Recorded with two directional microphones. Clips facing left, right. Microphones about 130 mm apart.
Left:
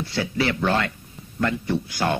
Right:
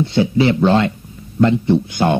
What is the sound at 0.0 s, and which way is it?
Speech, 20° right (ahead or behind).